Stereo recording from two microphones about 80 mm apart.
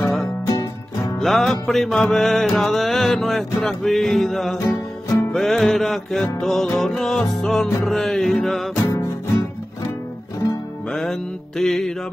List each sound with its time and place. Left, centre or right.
0.5 s music: left
1.2 s music: centre
8.8 s music: left
10.9 s music: centre